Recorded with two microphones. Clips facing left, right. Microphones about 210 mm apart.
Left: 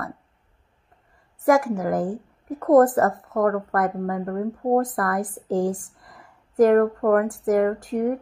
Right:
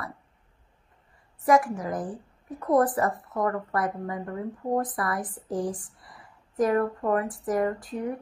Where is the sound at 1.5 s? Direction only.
45° left (ahead or behind).